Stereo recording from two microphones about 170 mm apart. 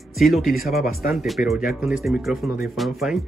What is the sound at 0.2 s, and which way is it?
Speech, centre (ahead or behind).